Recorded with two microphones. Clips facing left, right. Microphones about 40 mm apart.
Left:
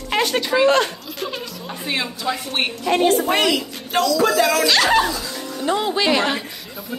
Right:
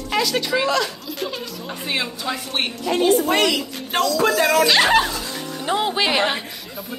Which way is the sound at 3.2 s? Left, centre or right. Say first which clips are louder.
Even; centre.